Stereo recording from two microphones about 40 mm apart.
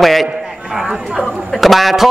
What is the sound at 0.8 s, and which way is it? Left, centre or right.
Speech, centre.